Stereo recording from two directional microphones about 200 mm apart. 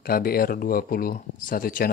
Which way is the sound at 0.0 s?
45° left (ahead or behind).